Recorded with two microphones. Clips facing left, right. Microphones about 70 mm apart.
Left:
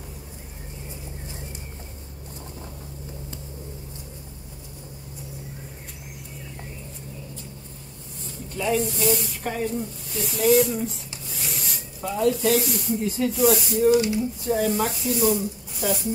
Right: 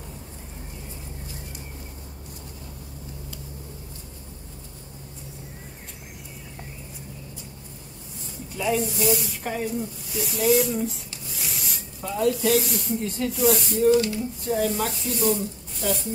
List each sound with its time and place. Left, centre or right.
8.5 s speech: centre
13.9 s a sound: centre
14.4 s speech: centre